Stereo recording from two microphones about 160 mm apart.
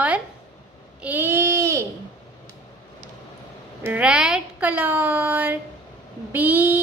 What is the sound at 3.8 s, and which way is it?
Speech, 10° right (ahead or behind).